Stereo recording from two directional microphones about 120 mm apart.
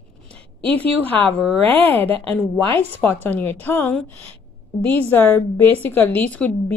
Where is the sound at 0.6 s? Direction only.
10° left (ahead or behind).